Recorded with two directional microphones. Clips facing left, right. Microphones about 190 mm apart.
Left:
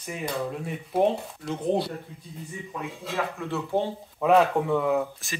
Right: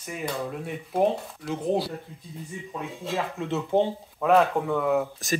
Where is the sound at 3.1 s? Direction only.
15° right (ahead or behind).